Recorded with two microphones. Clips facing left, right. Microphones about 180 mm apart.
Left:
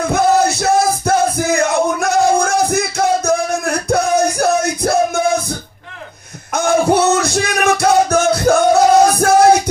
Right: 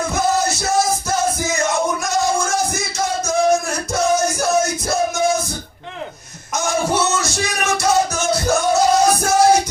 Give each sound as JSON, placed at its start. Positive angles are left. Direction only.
{"t": 0.1, "sound": "music", "side_deg": 60}
{"t": 6.5, "sound": "music", "side_deg": 60}